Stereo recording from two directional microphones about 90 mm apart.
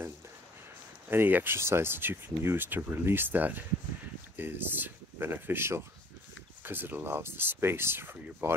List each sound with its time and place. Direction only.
1.1 s speech: 25° right (ahead or behind)